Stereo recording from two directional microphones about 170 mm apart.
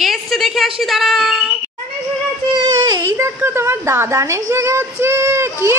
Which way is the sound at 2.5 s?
25° right (ahead or behind).